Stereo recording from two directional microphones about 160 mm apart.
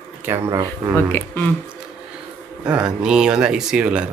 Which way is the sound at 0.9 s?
10° left (ahead or behind).